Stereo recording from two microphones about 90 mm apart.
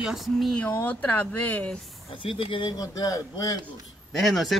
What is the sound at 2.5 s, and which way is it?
Speech, 70° left (ahead or behind).